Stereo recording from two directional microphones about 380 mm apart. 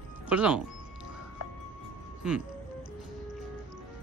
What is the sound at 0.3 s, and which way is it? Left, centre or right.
Speech, centre.